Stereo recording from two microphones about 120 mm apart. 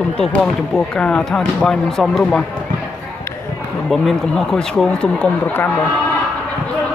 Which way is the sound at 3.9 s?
5° left (ahead or behind).